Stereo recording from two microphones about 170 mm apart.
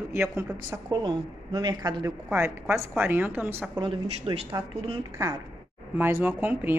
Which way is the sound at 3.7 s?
30° right (ahead or behind).